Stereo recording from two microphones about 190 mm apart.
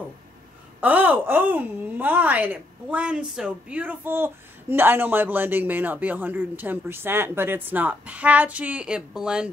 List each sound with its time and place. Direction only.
0.7 s a woman's voice: 10° right (ahead or behind)